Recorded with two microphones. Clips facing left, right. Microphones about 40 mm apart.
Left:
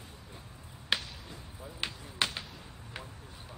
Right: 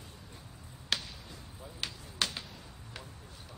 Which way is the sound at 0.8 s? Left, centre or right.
Centre.